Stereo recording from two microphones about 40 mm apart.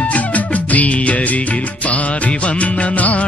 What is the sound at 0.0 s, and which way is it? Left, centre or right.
Music, left.